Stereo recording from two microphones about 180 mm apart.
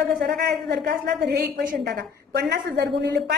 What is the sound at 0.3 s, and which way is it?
A woman's voice, 60° right (ahead or behind).